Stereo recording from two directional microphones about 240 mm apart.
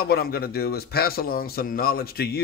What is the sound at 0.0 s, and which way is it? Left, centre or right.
Speech, left.